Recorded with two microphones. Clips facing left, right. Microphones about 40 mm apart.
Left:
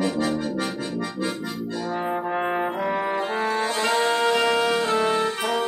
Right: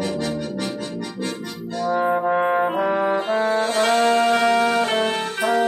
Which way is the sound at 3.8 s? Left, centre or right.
Right.